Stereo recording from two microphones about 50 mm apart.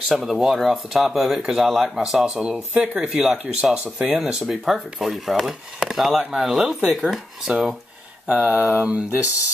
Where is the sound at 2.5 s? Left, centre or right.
Right; by 6.9 s centre.